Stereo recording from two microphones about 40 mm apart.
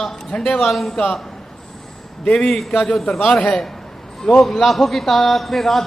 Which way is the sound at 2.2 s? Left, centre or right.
Left.